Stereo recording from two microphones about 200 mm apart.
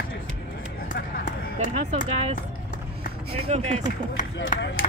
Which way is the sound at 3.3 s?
30° right (ahead or behind).